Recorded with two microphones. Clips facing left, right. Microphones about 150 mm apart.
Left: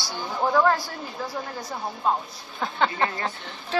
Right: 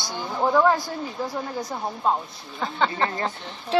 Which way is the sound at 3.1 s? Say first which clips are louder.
Right 2 dB; 30° right (ahead or behind).